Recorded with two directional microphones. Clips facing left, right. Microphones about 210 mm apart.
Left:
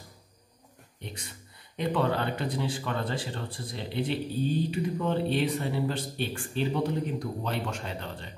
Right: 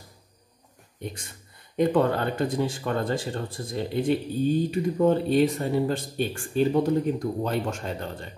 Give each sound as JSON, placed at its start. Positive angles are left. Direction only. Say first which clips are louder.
{"t": 1.8, "sound": "speech", "louder": "right 6 dB", "side_deg": -45}